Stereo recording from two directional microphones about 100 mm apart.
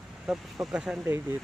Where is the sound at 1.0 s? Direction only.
20° right (ahead or behind).